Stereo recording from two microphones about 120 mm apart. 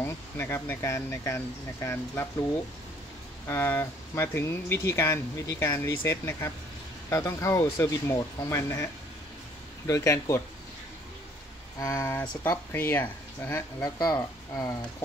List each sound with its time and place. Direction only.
0.0 s speech: 20° left (ahead or behind)
3.4 s speech: 15° left (ahead or behind)
9.8 s speech: 25° left (ahead or behind)
11.8 s speech: 25° left (ahead or behind)
13.8 s speech: 35° left (ahead or behind)